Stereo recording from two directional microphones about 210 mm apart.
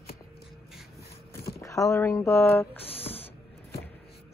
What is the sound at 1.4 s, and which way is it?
Speech, 15° left (ahead or behind).